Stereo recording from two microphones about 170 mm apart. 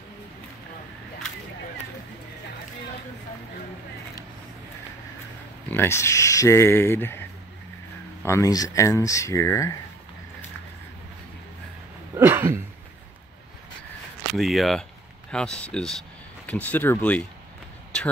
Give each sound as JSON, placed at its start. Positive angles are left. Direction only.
{"t": 5.7, "sound": "speech", "side_deg": 15}
{"t": 12.2, "sound": "speech", "side_deg": -15}
{"t": 14.3, "sound": "speech", "side_deg": 0}